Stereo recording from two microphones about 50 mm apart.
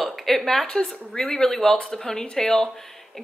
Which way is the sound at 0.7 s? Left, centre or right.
Centre.